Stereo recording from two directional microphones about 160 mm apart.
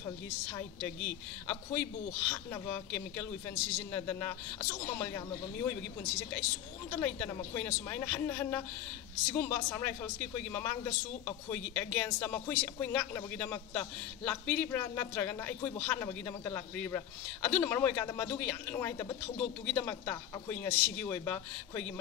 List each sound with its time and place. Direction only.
0.5 s a man's voice: 15° left (ahead or behind)
6.9 s a man's voice: 10° left (ahead or behind)